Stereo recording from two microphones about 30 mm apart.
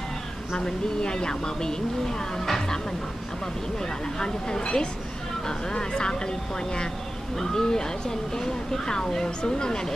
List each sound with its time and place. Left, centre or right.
0.6 s speech: left
4.2 s speech: left